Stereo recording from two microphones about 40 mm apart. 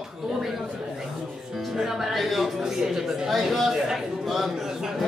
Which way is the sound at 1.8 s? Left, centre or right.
Centre.